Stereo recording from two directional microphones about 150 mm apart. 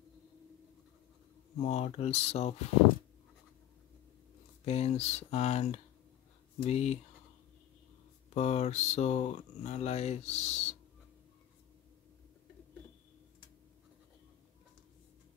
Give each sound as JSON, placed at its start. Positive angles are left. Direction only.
{"t": 1.6, "sound": "speech", "side_deg": 45}
{"t": 4.6, "sound": "speech", "side_deg": 45}
{"t": 8.4, "sound": "speech", "side_deg": 45}